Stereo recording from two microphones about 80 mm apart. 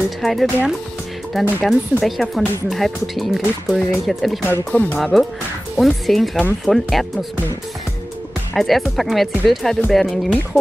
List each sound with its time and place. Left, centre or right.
0.2 s speech: centre
4.5 s speech: left
4.9 s speech: centre
8.5 s speech: centre